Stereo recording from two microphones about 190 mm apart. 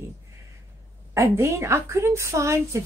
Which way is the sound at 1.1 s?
15° right (ahead or behind).